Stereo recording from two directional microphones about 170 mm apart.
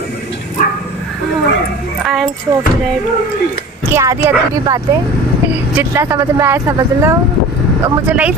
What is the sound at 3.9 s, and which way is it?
Speech, 15° right (ahead or behind).